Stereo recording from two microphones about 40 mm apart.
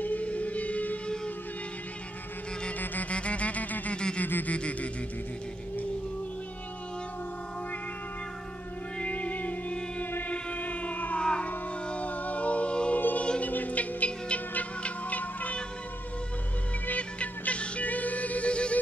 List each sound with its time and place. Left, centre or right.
0.0 s music: left
1.0 s music: left
2.8 s music: left
3.1 s music: left
3.9 s a sound: left
4.2 s a sound: left
4.5 s a sound: left
9.0 s music: left
10.3 s a sound: left
11.1 s music: left
11.9 s music: left
12.9 s choir: left
13.4 s music: left
16.8 s music: left